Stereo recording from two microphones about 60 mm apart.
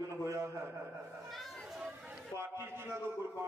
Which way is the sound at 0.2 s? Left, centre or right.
Right.